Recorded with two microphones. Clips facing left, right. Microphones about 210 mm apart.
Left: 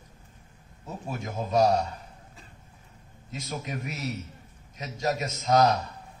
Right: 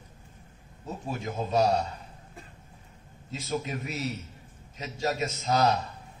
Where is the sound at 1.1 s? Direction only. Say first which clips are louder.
Left 1 dB; 35° right (ahead or behind).